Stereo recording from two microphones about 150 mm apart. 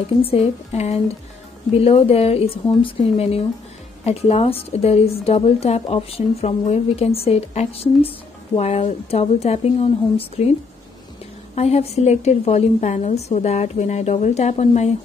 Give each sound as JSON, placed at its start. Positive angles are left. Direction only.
{"t": 0.2, "sound": "a woman's voice", "side_deg": 40}
{"t": 11.5, "sound": "a woman's voice", "side_deg": 45}